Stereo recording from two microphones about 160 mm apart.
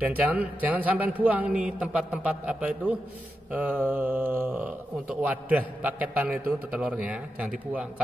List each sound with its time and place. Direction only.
0.6 s a man's voice: 10° right (ahead or behind)